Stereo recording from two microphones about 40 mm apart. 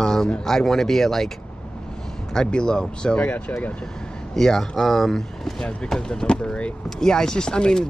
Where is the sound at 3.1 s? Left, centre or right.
Left.